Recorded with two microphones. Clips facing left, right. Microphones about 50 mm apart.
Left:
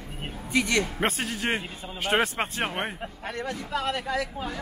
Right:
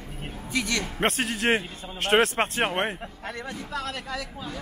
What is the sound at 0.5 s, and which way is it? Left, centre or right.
Speech, left.